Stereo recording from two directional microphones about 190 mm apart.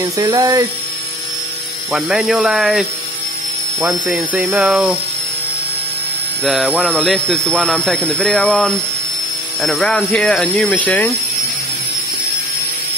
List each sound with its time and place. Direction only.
0.0 s speech: 20° right (ahead or behind)
1.9 s speech: 5° right (ahead or behind)
6.4 s speech: centre (ahead or behind)